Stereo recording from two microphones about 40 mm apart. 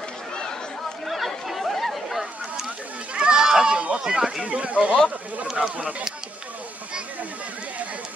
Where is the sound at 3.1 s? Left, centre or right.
Right.